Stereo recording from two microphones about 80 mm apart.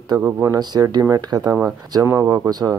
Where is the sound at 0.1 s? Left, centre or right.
Right.